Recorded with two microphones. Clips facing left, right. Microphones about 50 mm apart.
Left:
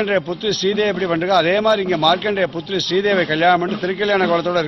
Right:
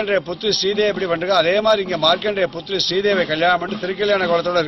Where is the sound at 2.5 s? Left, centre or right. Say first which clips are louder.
Left 2 dB; left.